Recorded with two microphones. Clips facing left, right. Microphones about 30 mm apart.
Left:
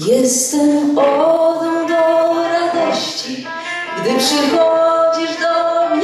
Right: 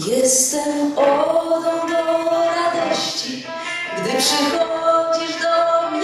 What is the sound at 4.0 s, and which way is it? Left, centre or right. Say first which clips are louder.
Music: left 4 dB; centre.